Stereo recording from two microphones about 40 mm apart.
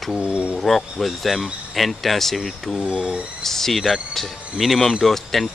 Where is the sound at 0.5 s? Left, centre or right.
Centre.